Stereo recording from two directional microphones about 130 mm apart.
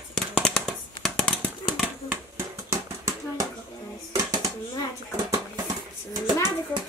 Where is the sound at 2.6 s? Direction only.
25° right (ahead or behind).